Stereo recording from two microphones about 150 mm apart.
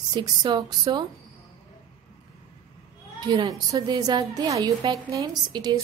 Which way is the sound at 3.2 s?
30° right (ahead or behind).